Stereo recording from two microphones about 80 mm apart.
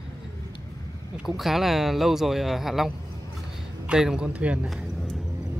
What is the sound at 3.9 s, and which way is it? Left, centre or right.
Speech, centre.